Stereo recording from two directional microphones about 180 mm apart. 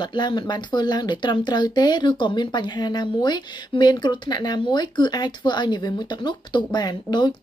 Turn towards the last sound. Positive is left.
turn(degrees=25)  # may be behind; listen again after turning